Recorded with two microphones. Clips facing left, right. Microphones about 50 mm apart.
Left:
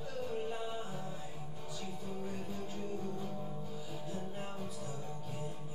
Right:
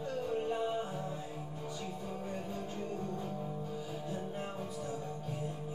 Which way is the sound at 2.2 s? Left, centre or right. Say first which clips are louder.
Right 1 dB; centre.